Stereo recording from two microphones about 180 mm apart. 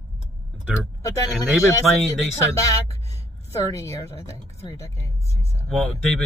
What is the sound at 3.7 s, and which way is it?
Speech, 15° left (ahead or behind).